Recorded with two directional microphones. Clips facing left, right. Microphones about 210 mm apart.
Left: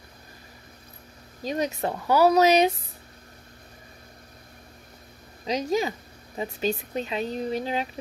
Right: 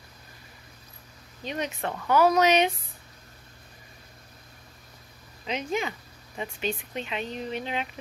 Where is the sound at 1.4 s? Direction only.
35° left (ahead or behind).